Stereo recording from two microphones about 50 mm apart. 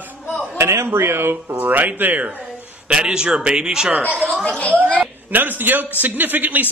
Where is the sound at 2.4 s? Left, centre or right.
Centre.